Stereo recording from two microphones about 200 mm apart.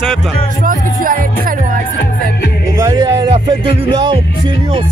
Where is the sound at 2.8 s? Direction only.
20° right (ahead or behind).